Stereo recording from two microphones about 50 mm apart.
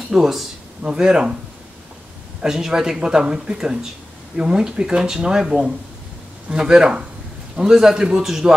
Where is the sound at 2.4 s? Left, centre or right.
Centre.